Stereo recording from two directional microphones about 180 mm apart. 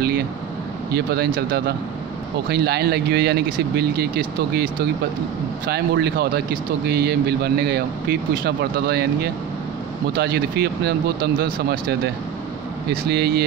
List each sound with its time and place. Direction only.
0.9 s speech: 60° right (ahead or behind)
12.9 s speech: 65° right (ahead or behind)